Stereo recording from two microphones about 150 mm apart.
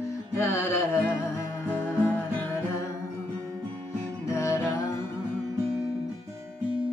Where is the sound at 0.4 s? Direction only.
20° left (ahead or behind).